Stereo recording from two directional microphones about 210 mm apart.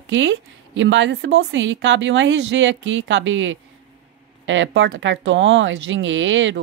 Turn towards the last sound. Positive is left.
turn(degrees=-65)  # may be behind; listen again after turning